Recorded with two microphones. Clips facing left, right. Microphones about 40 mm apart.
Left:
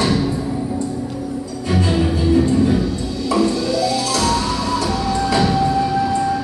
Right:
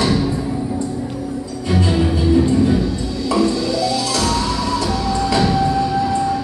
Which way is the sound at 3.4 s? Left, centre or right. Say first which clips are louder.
Even; left.